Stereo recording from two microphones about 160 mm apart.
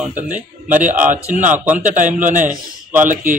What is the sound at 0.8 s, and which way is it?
A man's voice, 55° right (ahead or behind).